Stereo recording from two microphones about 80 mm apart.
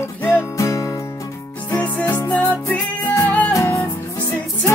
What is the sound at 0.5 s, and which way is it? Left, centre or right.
Music, left.